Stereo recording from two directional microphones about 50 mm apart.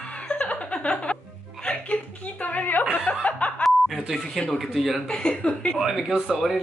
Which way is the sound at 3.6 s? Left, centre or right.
Centre.